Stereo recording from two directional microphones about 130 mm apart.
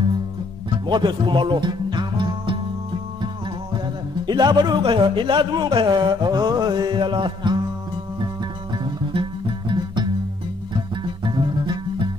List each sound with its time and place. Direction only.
0.8 s music: 35° right (ahead or behind)
4.3 s speech: 35° right (ahead or behind)
8.8 s music: 40° right (ahead or behind)
11.2 s music: 35° right (ahead or behind)